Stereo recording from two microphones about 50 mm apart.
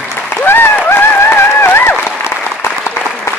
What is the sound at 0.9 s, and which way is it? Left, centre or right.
Run, left.